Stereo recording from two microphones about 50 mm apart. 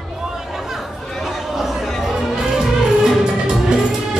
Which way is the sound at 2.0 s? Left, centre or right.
Centre.